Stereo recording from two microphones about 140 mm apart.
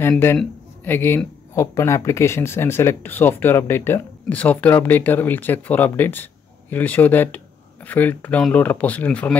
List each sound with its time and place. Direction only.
0.4 s speech: 15° left (ahead or behind)